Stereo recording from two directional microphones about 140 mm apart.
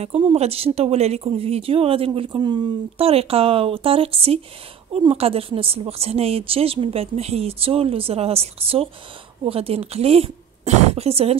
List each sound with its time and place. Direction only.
0.0 s a woman's voice: 45° right (ahead or behind)